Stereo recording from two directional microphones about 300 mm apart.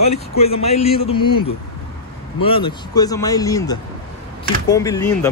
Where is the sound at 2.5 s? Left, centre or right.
Centre.